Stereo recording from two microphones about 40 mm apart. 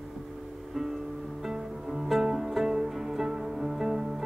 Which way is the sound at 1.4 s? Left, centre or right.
Centre.